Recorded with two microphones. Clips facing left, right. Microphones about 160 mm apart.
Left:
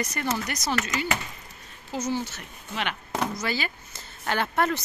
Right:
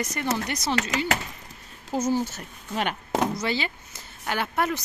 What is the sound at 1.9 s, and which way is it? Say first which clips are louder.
Speech: right 4 dB; 45° right (ahead or behind).